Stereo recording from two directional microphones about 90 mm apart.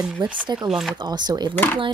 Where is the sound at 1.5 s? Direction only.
20° left (ahead or behind).